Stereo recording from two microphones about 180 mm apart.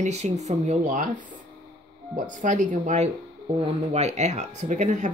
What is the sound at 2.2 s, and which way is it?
Speech, 45° right (ahead or behind).